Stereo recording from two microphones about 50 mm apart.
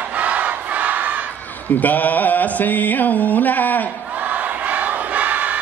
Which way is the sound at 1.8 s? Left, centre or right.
Left.